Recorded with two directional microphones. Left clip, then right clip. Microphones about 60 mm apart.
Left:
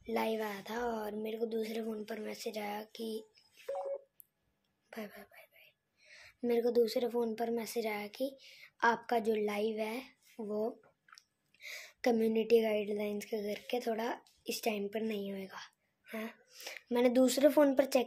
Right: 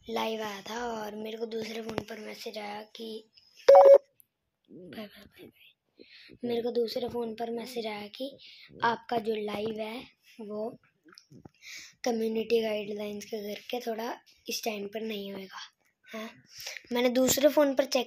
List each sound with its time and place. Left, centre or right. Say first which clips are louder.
0.0 s a woman's voice: right 3 dB; centre
0.8 s speech: even; left
1.7 s speech: right 3 dB; left
4.8 s speech: right 1 dB; left
6.4 s speech: even; left
7.3 s a woman's voice: right 1 dB; left
10.5 s a sound: right 1 dB; left
11.6 s a woman's voice: right 1 dB; left
13.3 s a woman's voice: right 1 dB; centre
15.3 s a woman's voice: right 3 dB; centre